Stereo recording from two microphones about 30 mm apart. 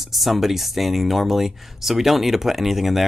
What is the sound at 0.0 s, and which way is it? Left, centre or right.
Speech, centre.